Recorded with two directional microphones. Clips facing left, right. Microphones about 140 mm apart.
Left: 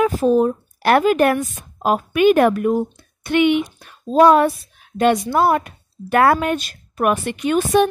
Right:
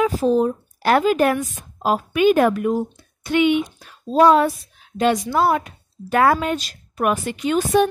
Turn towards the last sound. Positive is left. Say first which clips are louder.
# left 2 dB
turn(degrees=65)  # may be behind; listen again after turning